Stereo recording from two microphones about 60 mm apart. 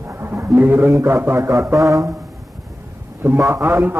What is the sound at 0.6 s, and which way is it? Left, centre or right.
Speech, right.